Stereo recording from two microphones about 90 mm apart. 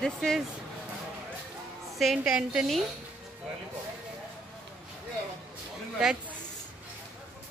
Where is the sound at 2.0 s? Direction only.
5° right (ahead or behind).